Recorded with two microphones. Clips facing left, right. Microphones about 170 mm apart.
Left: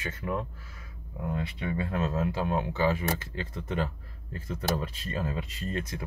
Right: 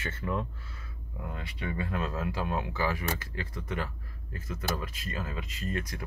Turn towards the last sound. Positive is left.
turn(degrees=25)  # may be behind; listen again after turning